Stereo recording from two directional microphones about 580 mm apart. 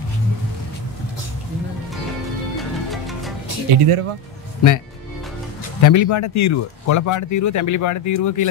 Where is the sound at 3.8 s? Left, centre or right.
Right.